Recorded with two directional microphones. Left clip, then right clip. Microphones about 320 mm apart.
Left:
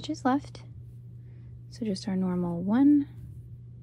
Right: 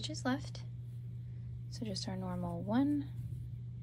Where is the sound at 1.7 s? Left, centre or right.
Centre.